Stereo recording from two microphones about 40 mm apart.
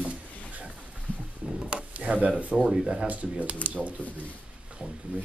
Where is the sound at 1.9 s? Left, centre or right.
Right.